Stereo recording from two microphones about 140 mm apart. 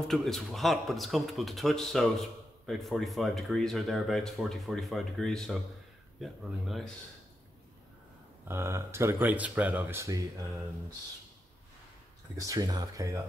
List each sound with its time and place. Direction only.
0.1 s speech: centre (ahead or behind)
8.5 s speech: 20° right (ahead or behind)
12.4 s speech: 25° right (ahead or behind)